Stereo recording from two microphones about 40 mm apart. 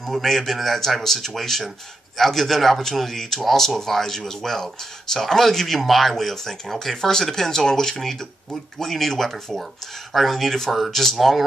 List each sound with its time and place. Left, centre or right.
0.0 s speech: centre